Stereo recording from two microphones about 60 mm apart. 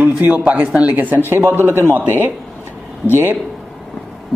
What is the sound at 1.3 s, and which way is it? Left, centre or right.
Speech, right.